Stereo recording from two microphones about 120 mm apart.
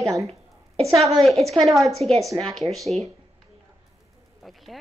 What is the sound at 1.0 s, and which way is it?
A woman's voice, centre (ahead or behind).